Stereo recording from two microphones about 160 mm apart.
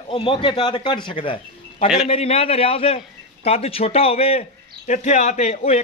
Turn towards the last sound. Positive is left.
turn(degrees=45)  # may be behind; listen again after turning